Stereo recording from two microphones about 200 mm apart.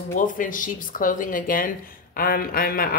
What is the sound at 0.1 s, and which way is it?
Speech, 40° left (ahead or behind).